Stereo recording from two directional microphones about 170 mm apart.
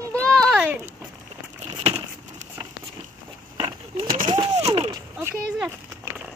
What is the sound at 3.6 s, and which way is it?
Vehicle, 25° right (ahead or behind).